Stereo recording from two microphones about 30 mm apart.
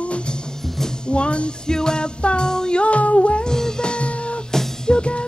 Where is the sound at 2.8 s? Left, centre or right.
Left.